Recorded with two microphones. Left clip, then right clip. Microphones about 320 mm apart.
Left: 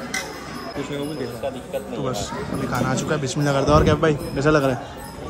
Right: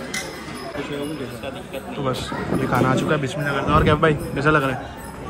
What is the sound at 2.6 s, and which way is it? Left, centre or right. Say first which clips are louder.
A man's voice: right 4 dB; centre.